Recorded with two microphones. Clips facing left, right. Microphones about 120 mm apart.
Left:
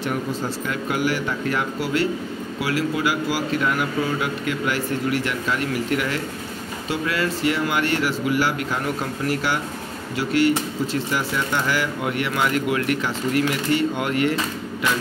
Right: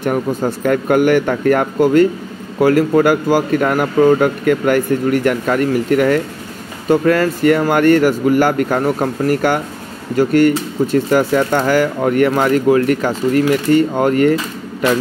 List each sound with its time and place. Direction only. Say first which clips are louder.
0.0 s speech: right 8 dB; 50° right (ahead or behind)